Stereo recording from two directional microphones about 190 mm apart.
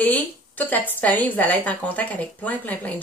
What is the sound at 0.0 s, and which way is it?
A woman's voice, 10° left (ahead or behind).